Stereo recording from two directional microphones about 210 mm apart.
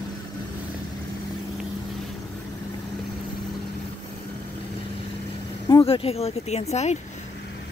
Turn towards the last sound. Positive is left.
turn(degrees=30)  # may be behind; listen again after turning